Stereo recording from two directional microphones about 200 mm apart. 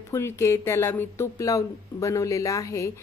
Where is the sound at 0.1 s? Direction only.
15° left (ahead or behind).